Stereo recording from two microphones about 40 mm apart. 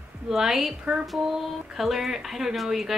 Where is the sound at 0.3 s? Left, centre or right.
Centre.